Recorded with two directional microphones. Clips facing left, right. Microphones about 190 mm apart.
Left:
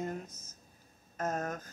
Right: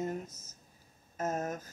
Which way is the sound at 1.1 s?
5° right (ahead or behind).